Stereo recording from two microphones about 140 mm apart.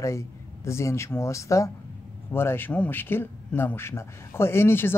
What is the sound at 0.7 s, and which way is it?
Speech, 20° left (ahead or behind).